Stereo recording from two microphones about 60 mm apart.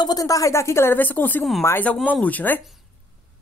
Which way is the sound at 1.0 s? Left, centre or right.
Left.